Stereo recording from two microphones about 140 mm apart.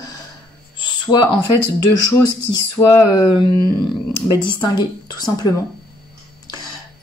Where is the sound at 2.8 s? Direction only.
25° left (ahead or behind).